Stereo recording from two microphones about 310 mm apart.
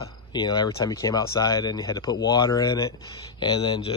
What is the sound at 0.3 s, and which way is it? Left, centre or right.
Speech, centre.